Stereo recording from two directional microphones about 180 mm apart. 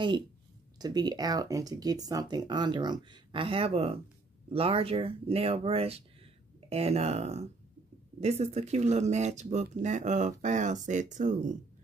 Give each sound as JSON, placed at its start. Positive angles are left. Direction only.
{"t": 0.7, "sound": "speech", "side_deg": -20}